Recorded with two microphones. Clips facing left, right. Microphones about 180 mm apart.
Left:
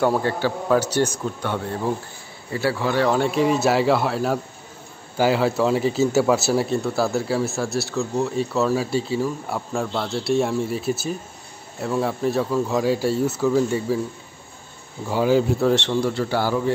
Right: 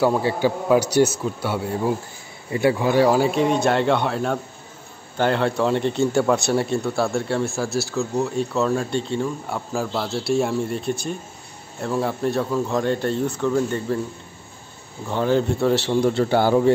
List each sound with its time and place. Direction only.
0.0 s speech: 5° right (ahead or behind)
15.0 s speech: 5° left (ahead or behind)
15.9 s a man's voice: 20° right (ahead or behind)